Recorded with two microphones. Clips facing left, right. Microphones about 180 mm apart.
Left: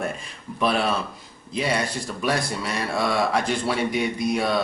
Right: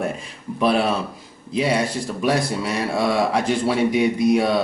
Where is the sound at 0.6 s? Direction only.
5° right (ahead or behind).